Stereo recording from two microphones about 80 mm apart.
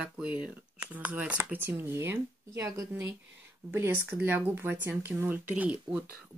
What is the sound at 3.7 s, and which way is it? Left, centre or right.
Speech, right.